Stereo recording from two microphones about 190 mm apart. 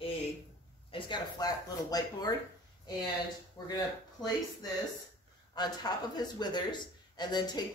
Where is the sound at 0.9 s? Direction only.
25° left (ahead or behind).